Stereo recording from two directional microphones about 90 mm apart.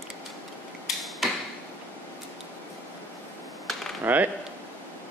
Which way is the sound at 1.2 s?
Centre (ahead or behind).